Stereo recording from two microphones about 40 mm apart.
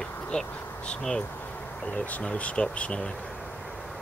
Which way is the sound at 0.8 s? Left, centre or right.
Centre.